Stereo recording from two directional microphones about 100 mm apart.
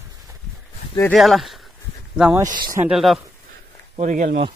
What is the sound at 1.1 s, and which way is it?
Speech, centre (ahead or behind).